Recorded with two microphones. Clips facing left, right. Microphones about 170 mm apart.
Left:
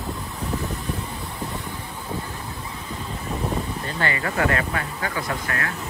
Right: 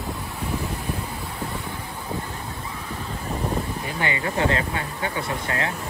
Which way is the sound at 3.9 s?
15° right (ahead or behind).